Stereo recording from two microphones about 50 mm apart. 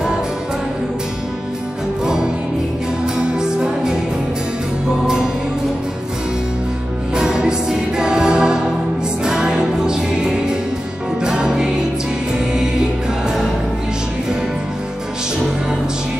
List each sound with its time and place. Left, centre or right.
3.2 s music: centre
5.0 s music: centre
7.2 s music: centre